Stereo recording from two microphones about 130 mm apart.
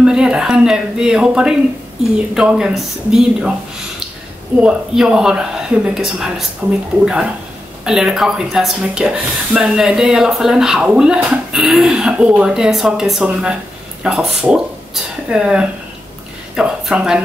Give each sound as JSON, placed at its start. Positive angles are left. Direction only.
{"t": 0.0, "sound": "speech", "side_deg": -5}
{"t": 4.6, "sound": "speech", "side_deg": -5}
{"t": 6.6, "sound": "speech", "side_deg": -15}
{"t": 7.8, "sound": "speech", "side_deg": -5}